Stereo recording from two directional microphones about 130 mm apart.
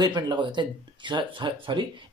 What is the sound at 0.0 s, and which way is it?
Speech, 35° right (ahead or behind).